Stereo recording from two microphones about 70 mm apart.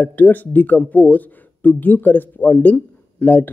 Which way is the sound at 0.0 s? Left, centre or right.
Left.